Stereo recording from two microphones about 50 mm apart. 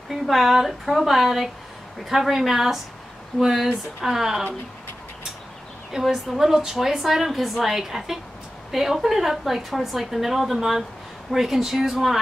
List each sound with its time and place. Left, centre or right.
0.1 s a woman's voice: centre
5.9 s a woman's voice: centre